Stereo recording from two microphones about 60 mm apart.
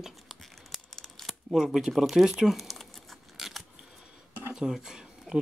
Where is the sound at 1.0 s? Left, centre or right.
Centre.